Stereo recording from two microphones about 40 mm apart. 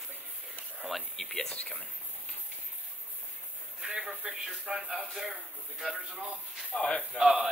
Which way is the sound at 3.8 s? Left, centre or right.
Centre.